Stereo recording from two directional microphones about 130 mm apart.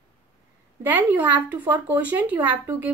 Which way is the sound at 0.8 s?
15° right (ahead or behind).